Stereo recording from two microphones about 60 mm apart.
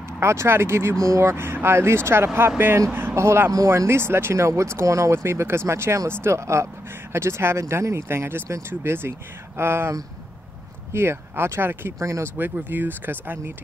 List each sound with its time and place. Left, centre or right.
0.2 s speech: right
0.9 s speech: right
1.2 s speech: right
3.2 s speech: right
3.5 s speech: right
12.0 s speech: right
12.4 s speech: right